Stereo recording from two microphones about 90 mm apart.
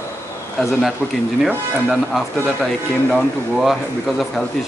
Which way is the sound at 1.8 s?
5° right (ahead or behind).